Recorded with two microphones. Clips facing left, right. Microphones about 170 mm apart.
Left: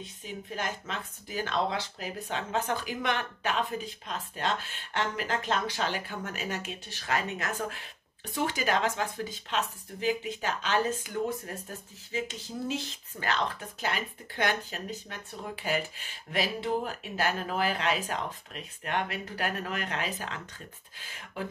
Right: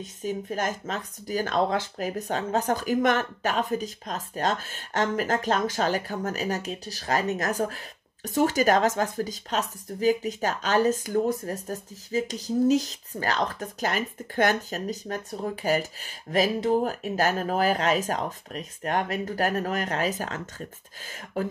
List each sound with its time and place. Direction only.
0.0 s speech: 45° right (ahead or behind)